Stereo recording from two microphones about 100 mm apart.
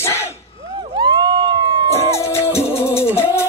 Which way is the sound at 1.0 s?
50° right (ahead or behind).